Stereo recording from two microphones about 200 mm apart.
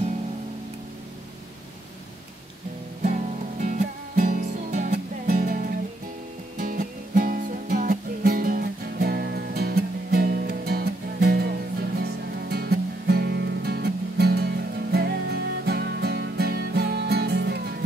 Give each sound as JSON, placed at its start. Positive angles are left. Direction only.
{"t": 3.6, "sound": "music", "side_deg": -40}
{"t": 6.6, "sound": "music", "side_deg": -40}